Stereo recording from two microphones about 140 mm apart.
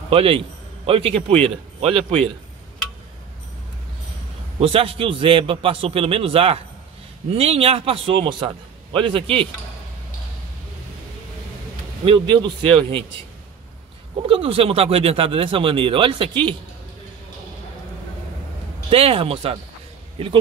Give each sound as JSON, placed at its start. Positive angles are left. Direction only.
{"t": 0.1, "sound": "a man's voice", "side_deg": -40}
{"t": 4.6, "sound": "a man's voice", "side_deg": -40}
{"t": 12.0, "sound": "a man's voice", "side_deg": -40}
{"t": 14.2, "sound": "a man's voice", "side_deg": -40}
{"t": 18.9, "sound": "speech", "side_deg": -40}